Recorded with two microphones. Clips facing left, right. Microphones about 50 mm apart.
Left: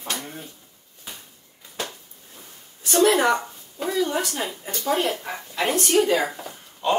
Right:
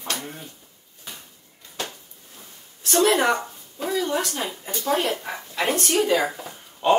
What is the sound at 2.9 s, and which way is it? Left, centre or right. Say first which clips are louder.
Speech: left 1 dB; centre.